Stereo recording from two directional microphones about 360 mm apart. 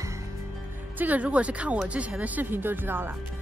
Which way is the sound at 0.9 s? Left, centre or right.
Centre.